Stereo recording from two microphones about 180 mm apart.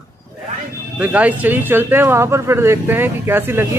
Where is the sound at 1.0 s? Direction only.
10° right (ahead or behind).